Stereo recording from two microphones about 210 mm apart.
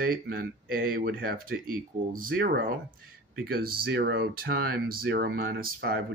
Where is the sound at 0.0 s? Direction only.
45° right (ahead or behind).